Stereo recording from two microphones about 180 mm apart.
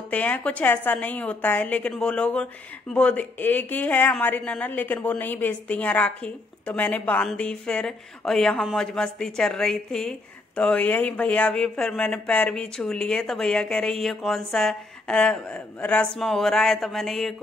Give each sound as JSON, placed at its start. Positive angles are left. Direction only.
{"t": 0.1, "sound": "a woman's voice", "side_deg": 10}